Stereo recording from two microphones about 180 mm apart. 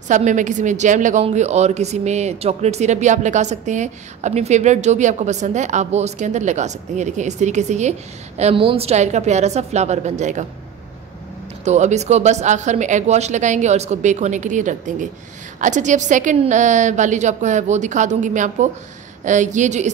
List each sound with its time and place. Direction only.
0.1 s a woman's voice: 45° right (ahead or behind)
11.6 s a woman's voice: 40° right (ahead or behind)